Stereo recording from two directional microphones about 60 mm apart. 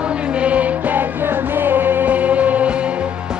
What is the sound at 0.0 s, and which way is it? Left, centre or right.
Music, centre.